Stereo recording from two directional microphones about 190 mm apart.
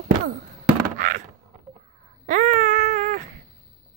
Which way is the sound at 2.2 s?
40° right (ahead or behind).